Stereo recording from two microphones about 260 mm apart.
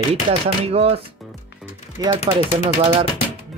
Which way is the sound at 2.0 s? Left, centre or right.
Centre.